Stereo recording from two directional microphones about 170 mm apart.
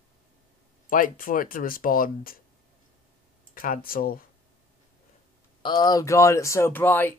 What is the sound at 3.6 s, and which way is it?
Speech, 55° left (ahead or behind).